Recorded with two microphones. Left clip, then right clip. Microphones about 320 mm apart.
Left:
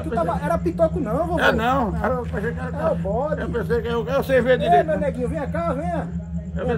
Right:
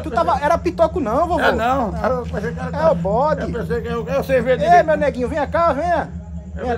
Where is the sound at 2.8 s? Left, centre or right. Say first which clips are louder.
Right 7 dB; centre.